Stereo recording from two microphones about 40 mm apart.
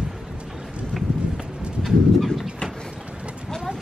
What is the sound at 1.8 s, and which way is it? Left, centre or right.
Bird, centre.